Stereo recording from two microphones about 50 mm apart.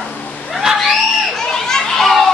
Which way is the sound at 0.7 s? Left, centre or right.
Centre.